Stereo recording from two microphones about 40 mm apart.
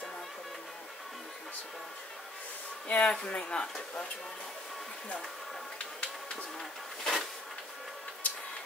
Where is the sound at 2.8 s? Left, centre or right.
Left.